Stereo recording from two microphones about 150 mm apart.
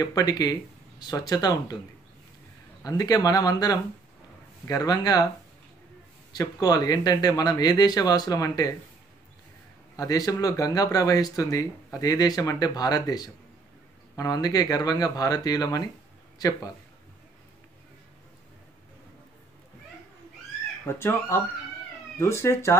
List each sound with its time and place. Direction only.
0.0 s speech: 25° left (ahead or behind)
2.8 s speech: 25° left (ahead or behind)
6.3 s speech: 25° left (ahead or behind)
9.9 s speech: 25° left (ahead or behind)
20.8 s speech: 15° left (ahead or behind)